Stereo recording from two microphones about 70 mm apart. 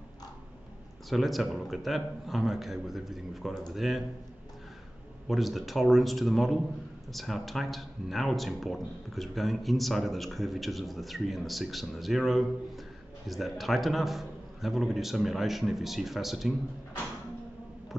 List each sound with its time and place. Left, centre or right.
1.1 s speech: centre
5.3 s speech: centre